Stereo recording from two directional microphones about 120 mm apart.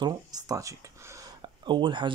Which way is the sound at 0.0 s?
30° right (ahead or behind).